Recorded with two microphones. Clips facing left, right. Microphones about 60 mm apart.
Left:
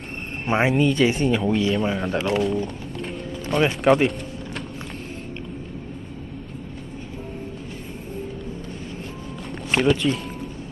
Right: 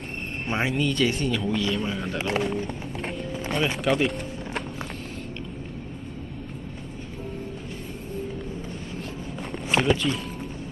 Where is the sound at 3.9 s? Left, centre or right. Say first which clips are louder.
Left 7 dB; left.